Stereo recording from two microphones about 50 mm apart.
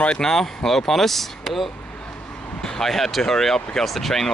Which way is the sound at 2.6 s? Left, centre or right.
Centre.